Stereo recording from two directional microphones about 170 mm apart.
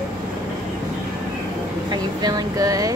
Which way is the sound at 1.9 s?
25° right (ahead or behind).